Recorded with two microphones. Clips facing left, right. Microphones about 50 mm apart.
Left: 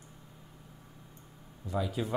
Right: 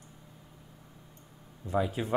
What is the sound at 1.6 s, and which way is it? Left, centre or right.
Speech, right.